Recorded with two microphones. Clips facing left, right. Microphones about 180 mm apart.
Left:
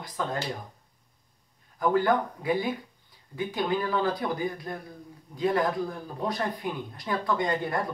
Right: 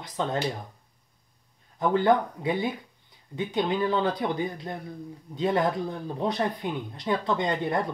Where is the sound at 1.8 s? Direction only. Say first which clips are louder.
Right 2 dB; 25° right (ahead or behind).